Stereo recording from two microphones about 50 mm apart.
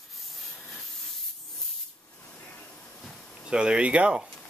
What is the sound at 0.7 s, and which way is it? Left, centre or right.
Spray, centre.